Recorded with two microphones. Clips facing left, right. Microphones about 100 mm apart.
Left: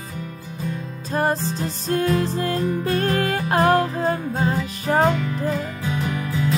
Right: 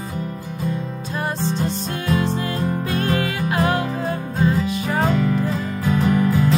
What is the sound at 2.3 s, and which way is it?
Music, 40° left (ahead or behind).